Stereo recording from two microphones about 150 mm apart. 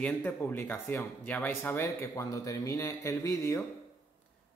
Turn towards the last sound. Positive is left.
turn(degrees=20)  # may be behind; listen again after turning